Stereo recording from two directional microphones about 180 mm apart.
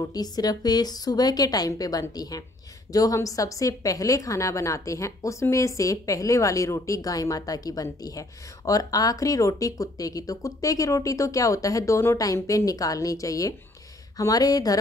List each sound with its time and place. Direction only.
0.0 s a woman's voice: 20° left (ahead or behind)